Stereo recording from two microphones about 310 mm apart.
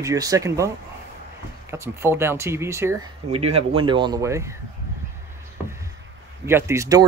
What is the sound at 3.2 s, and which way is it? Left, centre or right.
Speech, centre.